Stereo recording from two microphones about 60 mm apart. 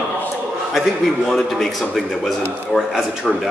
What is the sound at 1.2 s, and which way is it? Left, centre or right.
A man's voice, centre.